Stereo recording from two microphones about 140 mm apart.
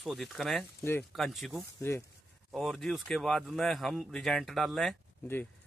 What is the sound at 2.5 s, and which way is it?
Speech, centre (ahead or behind).